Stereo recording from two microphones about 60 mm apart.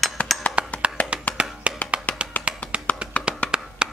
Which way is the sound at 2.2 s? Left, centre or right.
Centre.